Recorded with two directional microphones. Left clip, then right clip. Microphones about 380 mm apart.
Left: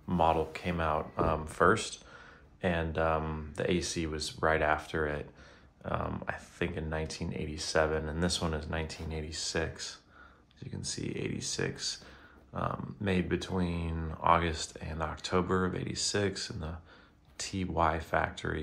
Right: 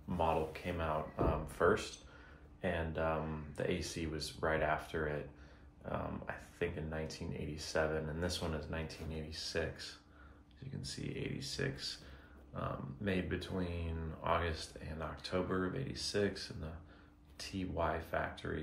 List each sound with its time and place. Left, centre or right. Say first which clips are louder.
0.2 s speech: left 7 dB; centre